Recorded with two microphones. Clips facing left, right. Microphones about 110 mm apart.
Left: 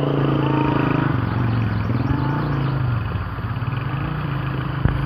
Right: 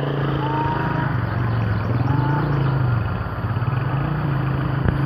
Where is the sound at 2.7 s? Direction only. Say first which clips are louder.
Right 2 dB; centre (ahead or behind).